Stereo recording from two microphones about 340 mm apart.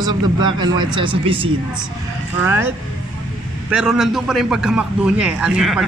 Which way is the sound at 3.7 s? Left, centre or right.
Centre.